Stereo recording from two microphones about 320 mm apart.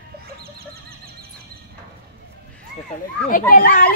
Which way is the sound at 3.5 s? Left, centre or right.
Left.